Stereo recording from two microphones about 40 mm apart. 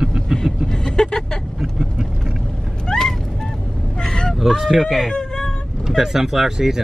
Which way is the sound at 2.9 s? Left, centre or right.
Centre.